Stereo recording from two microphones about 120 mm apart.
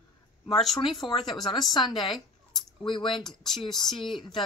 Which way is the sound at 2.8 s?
45° left (ahead or behind).